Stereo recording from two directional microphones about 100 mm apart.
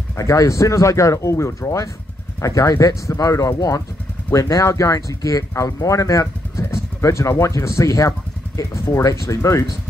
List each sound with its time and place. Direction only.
0.1 s speech: 35° left (ahead or behind)